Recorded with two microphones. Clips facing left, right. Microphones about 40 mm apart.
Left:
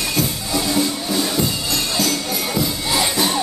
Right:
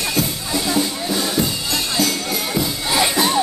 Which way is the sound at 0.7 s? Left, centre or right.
Centre.